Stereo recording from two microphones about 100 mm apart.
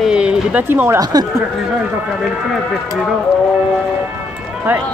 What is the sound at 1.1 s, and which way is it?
Speech, 40° right (ahead or behind).